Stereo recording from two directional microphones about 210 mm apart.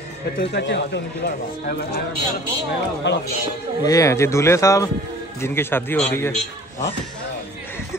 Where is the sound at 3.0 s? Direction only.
55° left (ahead or behind).